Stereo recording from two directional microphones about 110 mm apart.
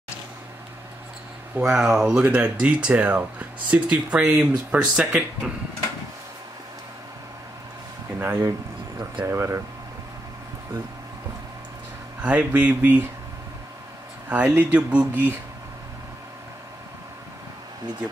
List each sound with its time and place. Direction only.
1.5 s speech: 5° right (ahead or behind)
8.2 s a sound: 25° right (ahead or behind)
9.2 s speech: 25° right (ahead or behind)
12.2 s speech: 10° right (ahead or behind)
14.3 s speech: 15° right (ahead or behind)